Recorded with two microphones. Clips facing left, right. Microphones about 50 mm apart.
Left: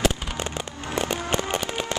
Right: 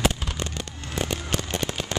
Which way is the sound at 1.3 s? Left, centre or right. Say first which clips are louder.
Left 4 dB; left.